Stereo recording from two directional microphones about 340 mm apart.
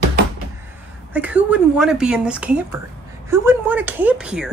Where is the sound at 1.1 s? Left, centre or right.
Centre.